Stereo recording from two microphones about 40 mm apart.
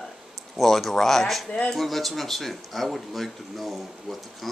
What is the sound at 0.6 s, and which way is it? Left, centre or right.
A man's voice, centre.